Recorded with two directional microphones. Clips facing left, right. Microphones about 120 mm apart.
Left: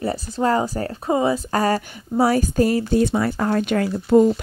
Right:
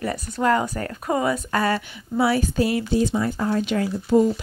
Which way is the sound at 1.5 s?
40° left (ahead or behind).